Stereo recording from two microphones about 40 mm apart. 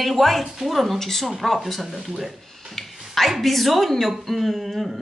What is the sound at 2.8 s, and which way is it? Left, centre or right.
A woman's voice, centre.